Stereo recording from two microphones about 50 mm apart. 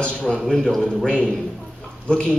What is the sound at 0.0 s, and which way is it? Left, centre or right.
A man's voice, centre.